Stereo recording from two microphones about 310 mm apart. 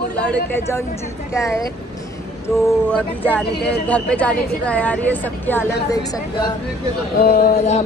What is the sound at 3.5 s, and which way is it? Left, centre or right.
Speech, left.